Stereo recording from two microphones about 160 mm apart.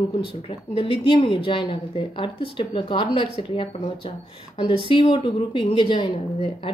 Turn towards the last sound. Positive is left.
turn(degrees=30)  # may be behind; listen again after turning